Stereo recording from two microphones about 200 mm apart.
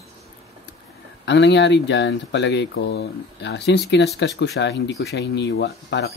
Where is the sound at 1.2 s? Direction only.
60° left (ahead or behind).